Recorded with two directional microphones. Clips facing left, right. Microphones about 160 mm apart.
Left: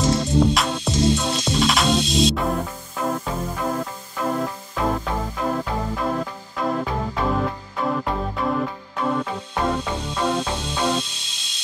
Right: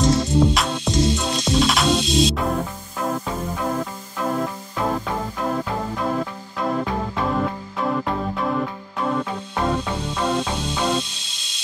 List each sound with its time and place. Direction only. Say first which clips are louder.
0.6 s music: right 1 dB; centre (ahead or behind)